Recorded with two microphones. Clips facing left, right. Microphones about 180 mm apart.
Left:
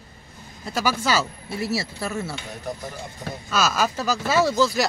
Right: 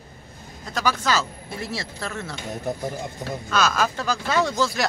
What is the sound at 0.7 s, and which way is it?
Speech, 10° left (ahead or behind).